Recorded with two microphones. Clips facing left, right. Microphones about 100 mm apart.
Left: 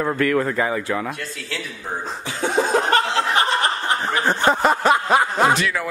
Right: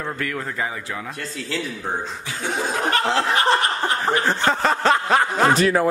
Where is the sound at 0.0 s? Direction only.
75° left (ahead or behind).